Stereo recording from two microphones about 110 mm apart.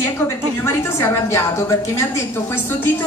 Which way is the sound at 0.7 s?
25° left (ahead or behind).